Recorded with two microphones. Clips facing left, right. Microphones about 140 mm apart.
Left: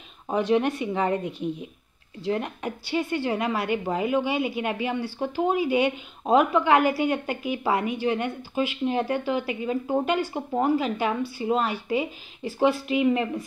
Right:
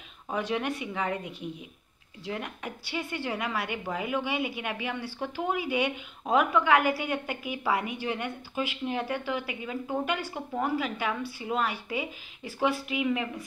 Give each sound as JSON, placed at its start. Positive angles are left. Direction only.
{"t": 0.3, "sound": "a woman's voice", "side_deg": 25}